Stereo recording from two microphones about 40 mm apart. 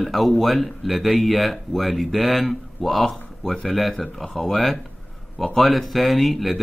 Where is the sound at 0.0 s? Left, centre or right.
Centre.